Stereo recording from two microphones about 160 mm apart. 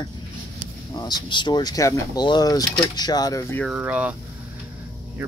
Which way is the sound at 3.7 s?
10° right (ahead or behind).